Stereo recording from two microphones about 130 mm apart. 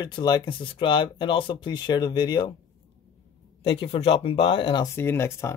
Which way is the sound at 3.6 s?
40° left (ahead or behind).